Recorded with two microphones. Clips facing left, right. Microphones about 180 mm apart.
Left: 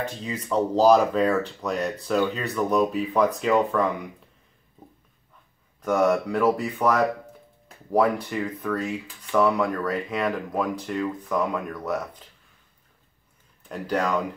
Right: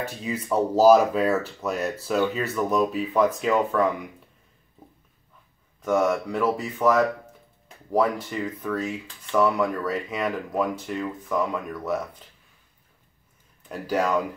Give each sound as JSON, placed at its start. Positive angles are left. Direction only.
{"t": 0.0, "sound": "speech", "side_deg": -10}
{"t": 5.8, "sound": "speech", "side_deg": 0}
{"t": 13.7, "sound": "speech", "side_deg": -5}